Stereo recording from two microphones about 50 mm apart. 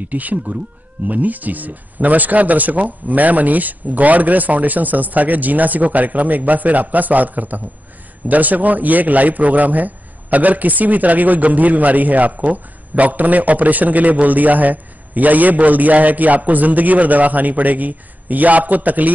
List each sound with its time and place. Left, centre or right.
0.0 s a man's voice: right